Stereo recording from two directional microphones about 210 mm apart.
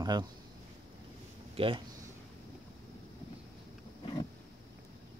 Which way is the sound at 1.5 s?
25° right (ahead or behind).